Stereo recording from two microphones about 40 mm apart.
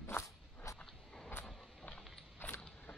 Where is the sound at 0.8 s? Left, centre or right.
Left.